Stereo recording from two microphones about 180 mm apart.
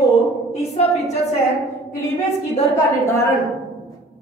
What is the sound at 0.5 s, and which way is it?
Speech, 35° left (ahead or behind).